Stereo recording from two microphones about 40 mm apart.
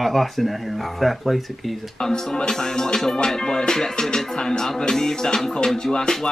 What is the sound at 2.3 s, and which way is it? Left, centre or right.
Music, centre.